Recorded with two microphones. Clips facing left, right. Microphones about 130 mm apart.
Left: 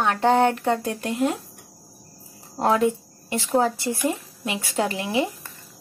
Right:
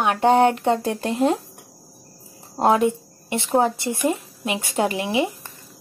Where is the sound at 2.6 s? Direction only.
20° right (ahead or behind).